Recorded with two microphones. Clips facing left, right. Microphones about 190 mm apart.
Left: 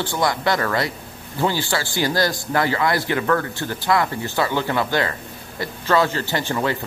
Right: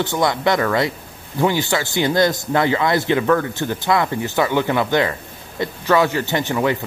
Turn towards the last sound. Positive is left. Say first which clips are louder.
# right 3 dB
turn(degrees=-15)  # may be behind; listen again after turning